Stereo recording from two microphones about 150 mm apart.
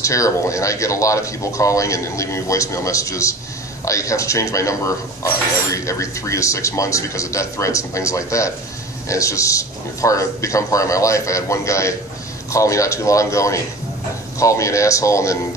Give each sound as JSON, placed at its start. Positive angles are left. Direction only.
{"t": 0.0, "sound": "speech", "side_deg": 20}